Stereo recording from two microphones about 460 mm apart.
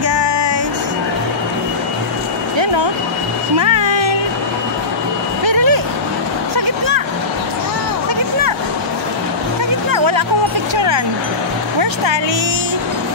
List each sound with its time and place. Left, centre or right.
0.1 s music: right
3.9 s cat: right
5.4 s vehicle: right
9.8 s music: right